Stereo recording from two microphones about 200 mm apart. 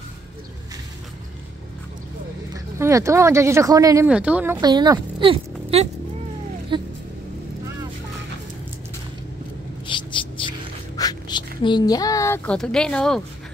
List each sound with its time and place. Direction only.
2.5 s speech: 15° right (ahead or behind)
4.6 s speech: 20° right (ahead or behind)
9.8 s a sound: 25° left (ahead or behind)
12.5 s speech: 5° left (ahead or behind)